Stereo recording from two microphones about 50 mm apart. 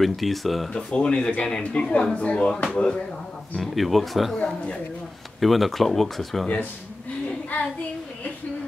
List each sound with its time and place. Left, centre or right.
0.0 s speech: centre
0.7 s speech: centre
3.5 s speech: centre
5.4 s speech: centre
6.4 s speech: left